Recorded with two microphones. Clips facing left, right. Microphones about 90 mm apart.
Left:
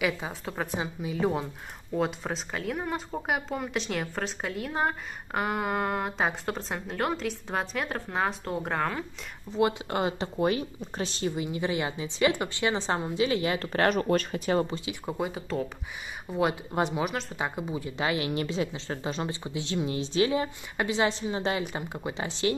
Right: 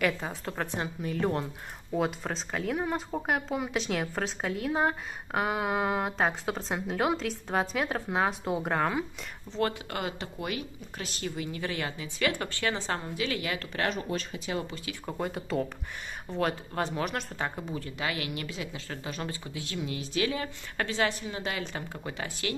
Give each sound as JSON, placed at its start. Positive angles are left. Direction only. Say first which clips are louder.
{"t": 0.0, "sound": "speech", "louder": "even", "side_deg": 5}
{"t": 9.5, "sound": "a woman's voice", "louder": "left 4 dB", "side_deg": 15}
{"t": 9.8, "sound": "speech", "louder": "left 6 dB", "side_deg": 25}
{"t": 13.8, "sound": "speech", "louder": "left 8 dB", "side_deg": 60}
{"t": 14.9, "sound": "speech", "louder": "left 2 dB", "side_deg": 10}
{"t": 16.3, "sound": "a woman's voice", "louder": "left 3 dB", "side_deg": 15}
{"t": 17.0, "sound": "a woman's voice", "louder": "left 2 dB", "side_deg": 5}
{"t": 17.9, "sound": "speech", "louder": "left 7 dB", "side_deg": 25}